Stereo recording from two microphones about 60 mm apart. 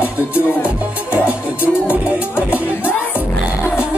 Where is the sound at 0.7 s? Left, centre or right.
Right.